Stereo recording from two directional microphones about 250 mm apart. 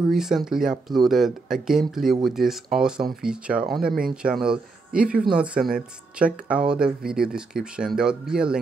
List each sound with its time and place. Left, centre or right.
0.1 s speech: centre